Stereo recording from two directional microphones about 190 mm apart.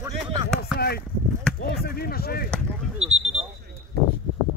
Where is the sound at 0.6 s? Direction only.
55° left (ahead or behind).